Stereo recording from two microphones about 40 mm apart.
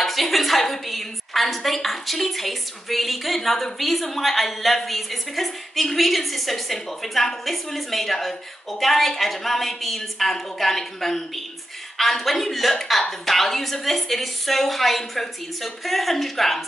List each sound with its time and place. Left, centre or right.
0.0 s a woman's voice: centre